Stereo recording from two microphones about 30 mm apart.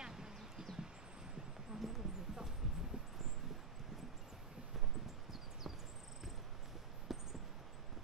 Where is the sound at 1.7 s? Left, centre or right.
Centre.